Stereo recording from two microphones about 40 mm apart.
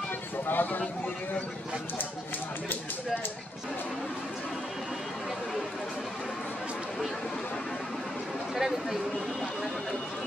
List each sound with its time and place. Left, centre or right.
0.5 s speech: left
0.7 s speech: left
8.5 s speech: centre